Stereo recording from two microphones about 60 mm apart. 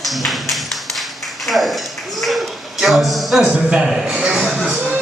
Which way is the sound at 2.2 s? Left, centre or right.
Centre.